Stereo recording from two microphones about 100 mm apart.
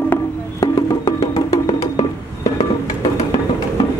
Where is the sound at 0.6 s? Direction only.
30° left (ahead or behind).